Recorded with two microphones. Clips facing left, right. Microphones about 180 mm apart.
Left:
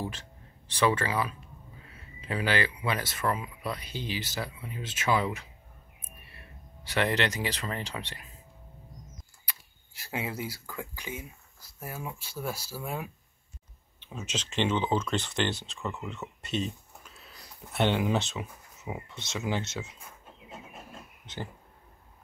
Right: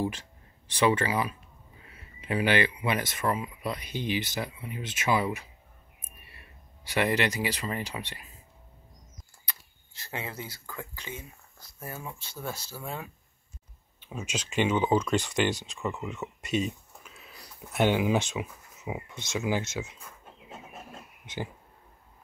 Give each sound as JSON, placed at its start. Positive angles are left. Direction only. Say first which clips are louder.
{"t": 0.7, "sound": "speech", "louder": "right 2 dB", "side_deg": -15}
{"t": 6.8, "sound": "speech", "louder": "right 1 dB", "side_deg": -10}
{"t": 9.5, "sound": "speech", "louder": "right 1 dB", "side_deg": 10}
{"t": 13.9, "sound": "speech", "louder": "right 1 dB", "side_deg": -10}